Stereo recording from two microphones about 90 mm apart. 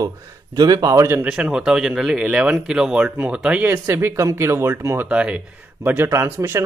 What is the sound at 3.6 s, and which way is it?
Speech, 25° right (ahead or behind).